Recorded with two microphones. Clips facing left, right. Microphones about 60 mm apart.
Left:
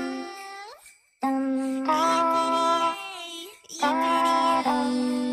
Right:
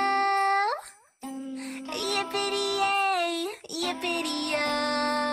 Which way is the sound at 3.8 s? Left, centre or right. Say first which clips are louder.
Left 9 dB; left.